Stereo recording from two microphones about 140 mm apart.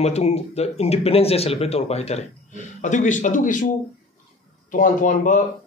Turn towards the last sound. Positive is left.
turn(degrees=70)  # may be behind; listen again after turning